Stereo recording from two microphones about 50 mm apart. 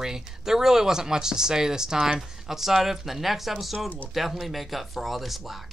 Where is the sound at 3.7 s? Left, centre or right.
Left.